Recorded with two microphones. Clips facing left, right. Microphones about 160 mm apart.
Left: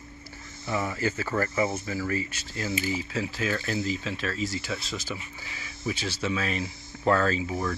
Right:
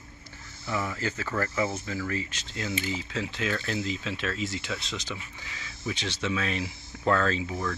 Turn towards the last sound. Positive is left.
turn(degrees=5)  # may be behind; listen again after turning